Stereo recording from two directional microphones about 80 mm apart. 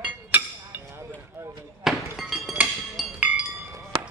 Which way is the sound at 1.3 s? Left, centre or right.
Right.